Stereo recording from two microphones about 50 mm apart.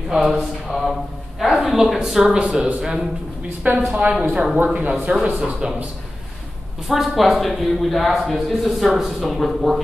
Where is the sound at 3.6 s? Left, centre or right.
Right.